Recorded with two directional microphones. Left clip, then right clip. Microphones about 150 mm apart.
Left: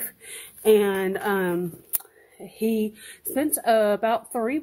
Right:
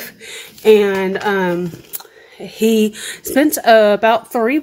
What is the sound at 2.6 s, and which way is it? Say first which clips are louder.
Speech: right 11 dB; 10° right (ahead or behind).